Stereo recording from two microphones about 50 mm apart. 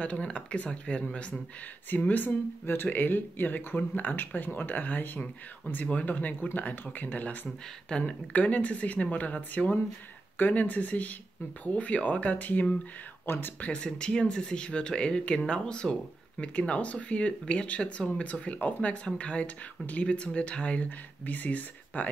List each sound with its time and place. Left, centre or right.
0.0 s speech: left
1.9 s speech: left
13.2 s speech: left
13.6 s speech: centre